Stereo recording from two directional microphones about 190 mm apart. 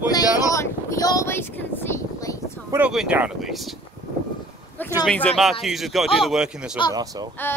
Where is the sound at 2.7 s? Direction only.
5° right (ahead or behind).